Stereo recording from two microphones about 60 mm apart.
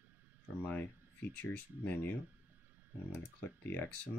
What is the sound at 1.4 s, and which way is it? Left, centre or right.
Speech, left.